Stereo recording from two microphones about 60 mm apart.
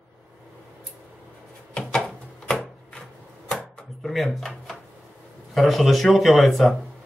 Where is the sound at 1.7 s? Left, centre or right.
Centre.